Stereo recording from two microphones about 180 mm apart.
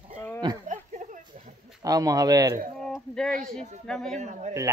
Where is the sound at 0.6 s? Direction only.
40° right (ahead or behind).